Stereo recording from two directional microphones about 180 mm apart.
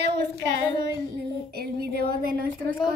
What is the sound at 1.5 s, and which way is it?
Speech, 60° right (ahead or behind).